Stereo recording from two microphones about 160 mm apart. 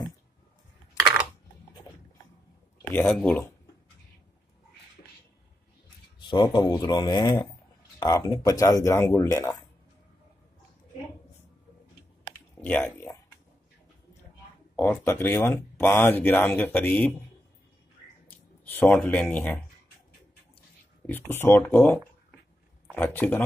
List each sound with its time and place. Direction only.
2.9 s speech: 10° left (ahead or behind)
6.2 s speech: 30° left (ahead or behind)
12.3 s a sound: 10° left (ahead or behind)
14.8 s speech: 15° left (ahead or behind)
18.7 s speech: 10° left (ahead or behind)
21.1 s speech: 15° left (ahead or behind)